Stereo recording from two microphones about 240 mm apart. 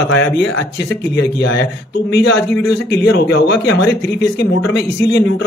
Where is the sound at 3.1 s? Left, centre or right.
Left.